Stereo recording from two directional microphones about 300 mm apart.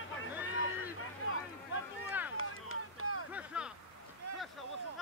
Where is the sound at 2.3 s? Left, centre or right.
Left.